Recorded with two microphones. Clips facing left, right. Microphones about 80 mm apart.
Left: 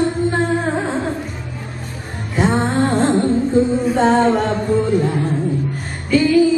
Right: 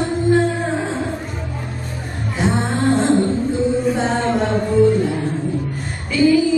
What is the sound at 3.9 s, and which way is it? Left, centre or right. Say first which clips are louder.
A capella: left 6 dB; left.